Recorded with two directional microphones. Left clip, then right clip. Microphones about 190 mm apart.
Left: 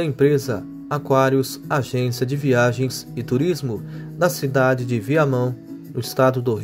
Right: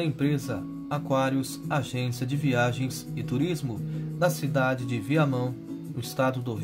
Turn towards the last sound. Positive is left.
turn(degrees=35)  # may be behind; listen again after turning